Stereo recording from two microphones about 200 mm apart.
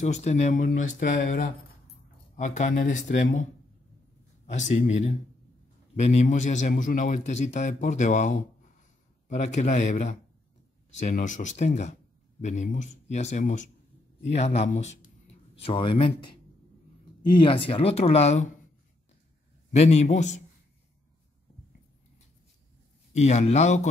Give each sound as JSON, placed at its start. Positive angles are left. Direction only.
{"t": 0.0, "sound": "a man's voice", "side_deg": 35}
{"t": 4.5, "sound": "a man's voice", "side_deg": 35}
{"t": 17.3, "sound": "speech", "side_deg": 25}
{"t": 19.7, "sound": "a man's voice", "side_deg": 35}
{"t": 23.1, "sound": "a man's voice", "side_deg": 35}